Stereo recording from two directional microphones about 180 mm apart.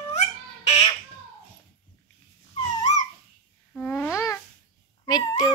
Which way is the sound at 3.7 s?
10° left (ahead or behind).